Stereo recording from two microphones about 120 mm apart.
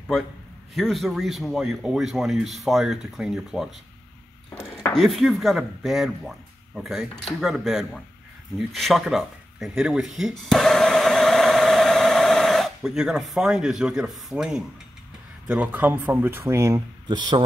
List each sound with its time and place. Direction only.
0.7 s speech: centre (ahead or behind)
4.9 s speech: centre (ahead or behind)
8.5 s a sound: centre (ahead or behind)
15.4 s speech: 10° right (ahead or behind)
17.1 s speech: 35° right (ahead or behind)